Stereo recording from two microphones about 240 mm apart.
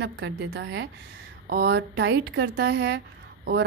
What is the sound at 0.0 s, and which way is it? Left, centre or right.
Speech, right.